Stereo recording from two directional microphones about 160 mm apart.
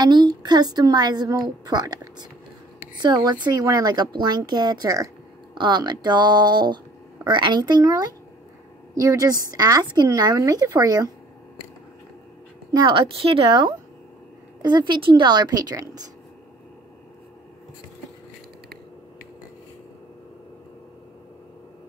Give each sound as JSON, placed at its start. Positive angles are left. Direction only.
{"t": 0.0, "sound": "a woman's voice", "side_deg": -30}
{"t": 12.7, "sound": "a woman's voice", "side_deg": -30}